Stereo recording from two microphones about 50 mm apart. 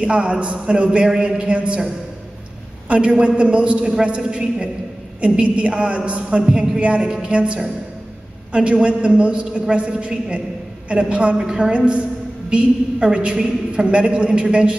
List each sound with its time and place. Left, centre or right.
0.0 s a woman's voice: right
2.9 s a woman's voice: right
11.7 s a woman's voice: right